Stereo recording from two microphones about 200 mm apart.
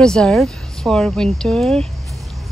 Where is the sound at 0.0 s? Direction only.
5° left (ahead or behind).